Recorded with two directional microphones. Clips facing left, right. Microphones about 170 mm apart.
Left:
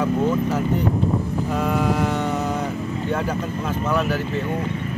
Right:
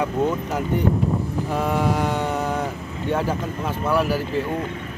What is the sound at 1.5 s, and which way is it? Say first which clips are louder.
Speech: even; 5° right (ahead or behind).